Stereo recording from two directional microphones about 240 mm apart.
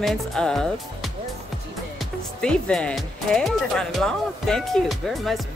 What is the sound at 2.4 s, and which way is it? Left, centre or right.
Speech, centre.